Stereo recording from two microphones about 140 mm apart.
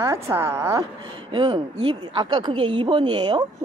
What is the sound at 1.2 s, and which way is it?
Speech, 40° right (ahead or behind).